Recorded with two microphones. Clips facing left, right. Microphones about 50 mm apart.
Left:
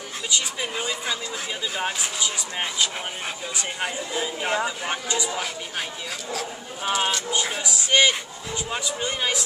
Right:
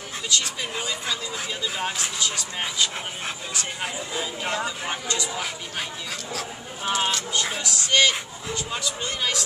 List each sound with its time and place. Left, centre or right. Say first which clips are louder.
0.3 s speech: even; centre
6.3 s speech: left 2 dB; centre
7.6 s speech: left 1 dB; centre